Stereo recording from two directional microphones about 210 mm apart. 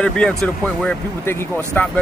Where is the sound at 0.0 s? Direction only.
5° left (ahead or behind).